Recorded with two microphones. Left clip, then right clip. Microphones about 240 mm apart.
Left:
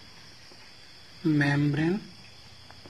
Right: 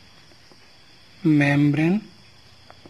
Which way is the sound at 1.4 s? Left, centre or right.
Right.